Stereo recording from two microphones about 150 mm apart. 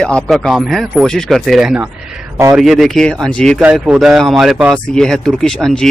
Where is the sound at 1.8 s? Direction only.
15° right (ahead or behind).